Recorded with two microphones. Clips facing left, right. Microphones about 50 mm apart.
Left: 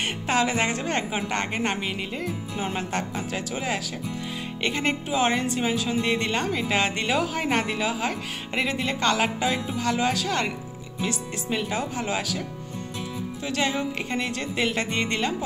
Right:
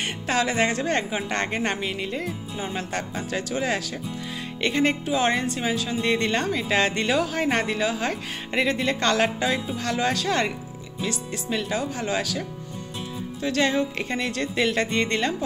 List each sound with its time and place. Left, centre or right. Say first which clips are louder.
0.0 s speech: left 1 dB; centre
2.6 s music: left 1 dB; left
3.3 s speech: right 3 dB; centre
5.0 s speech: right 1 dB; centre
10.2 s speech: right 2 dB; centre
11.0 s speech: even; centre
13.4 s speech: right 4 dB; centre